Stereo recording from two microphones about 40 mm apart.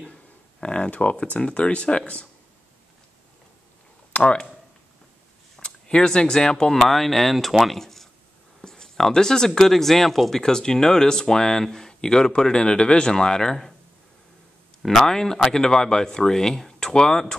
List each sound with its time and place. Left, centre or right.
0.0 s speech: left
4.2 s speech: left
5.6 s speech: left; by 7.8 s centre
7.8 s a sound: centre
8.6 s speech: centre
14.8 s speech: centre